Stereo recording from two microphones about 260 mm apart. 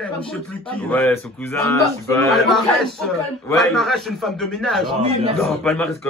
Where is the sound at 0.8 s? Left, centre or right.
Centre.